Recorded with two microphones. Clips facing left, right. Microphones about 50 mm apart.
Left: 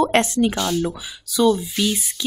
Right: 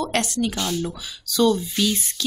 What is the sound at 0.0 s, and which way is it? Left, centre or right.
Speech, left.